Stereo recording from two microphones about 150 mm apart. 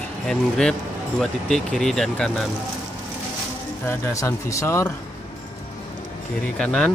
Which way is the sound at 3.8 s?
15° left (ahead or behind).